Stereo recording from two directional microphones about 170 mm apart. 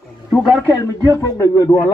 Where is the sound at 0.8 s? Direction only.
15° left (ahead or behind).